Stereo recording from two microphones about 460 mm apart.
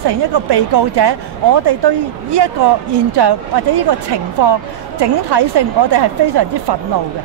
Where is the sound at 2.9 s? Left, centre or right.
Right.